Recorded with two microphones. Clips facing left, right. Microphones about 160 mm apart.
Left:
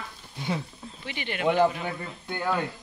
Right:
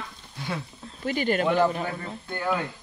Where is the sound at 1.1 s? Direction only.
40° right (ahead or behind).